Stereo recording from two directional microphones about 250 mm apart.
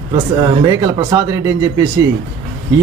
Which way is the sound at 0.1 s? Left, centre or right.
Centre.